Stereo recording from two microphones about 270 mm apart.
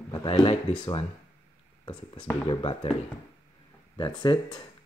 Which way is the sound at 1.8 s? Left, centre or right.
Centre.